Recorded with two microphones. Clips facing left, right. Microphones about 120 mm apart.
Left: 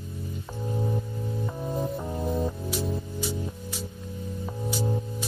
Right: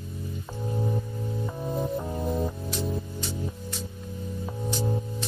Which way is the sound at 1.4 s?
Centre (ahead or behind).